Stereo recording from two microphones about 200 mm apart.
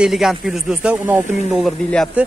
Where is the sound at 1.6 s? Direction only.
5° left (ahead or behind).